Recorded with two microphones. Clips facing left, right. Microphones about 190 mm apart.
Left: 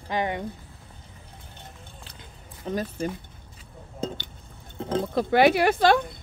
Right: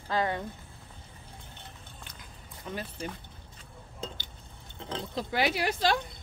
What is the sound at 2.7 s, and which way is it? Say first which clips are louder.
Speech: left 9 dB; 40° left (ahead or behind).